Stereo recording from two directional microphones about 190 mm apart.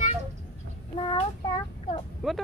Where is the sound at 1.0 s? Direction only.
25° left (ahead or behind).